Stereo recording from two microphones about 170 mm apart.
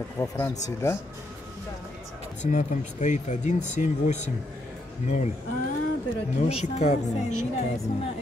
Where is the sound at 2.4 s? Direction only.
45° left (ahead or behind).